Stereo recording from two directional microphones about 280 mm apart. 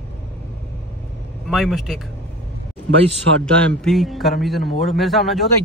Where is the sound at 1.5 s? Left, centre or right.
Centre.